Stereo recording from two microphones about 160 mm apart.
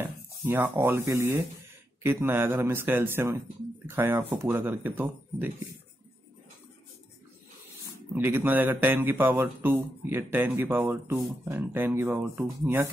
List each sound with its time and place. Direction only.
0.0 s speech: 15° right (ahead or behind)
8.1 s speech: 15° right (ahead or behind)